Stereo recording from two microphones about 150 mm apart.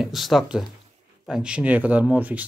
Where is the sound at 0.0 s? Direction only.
Centre (ahead or behind).